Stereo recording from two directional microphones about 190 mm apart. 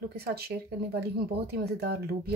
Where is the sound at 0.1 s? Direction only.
55° right (ahead or behind).